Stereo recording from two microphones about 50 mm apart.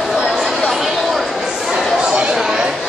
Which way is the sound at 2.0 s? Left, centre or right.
Centre.